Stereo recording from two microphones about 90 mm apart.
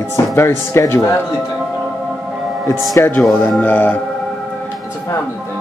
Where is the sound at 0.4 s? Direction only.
30° left (ahead or behind).